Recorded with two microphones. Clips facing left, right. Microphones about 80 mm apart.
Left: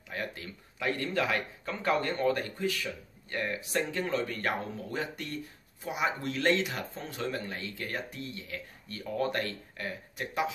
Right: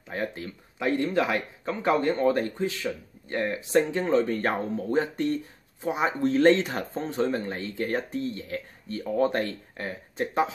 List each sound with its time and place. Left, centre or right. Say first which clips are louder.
0.1 s speech: right 6 dB; right